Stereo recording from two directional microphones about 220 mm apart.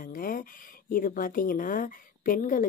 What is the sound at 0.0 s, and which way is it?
Speech, 40° left (ahead or behind).